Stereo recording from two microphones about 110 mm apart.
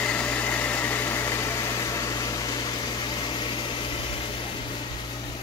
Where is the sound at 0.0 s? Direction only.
10° left (ahead or behind); by 3.6 s 50° left (ahead or behind).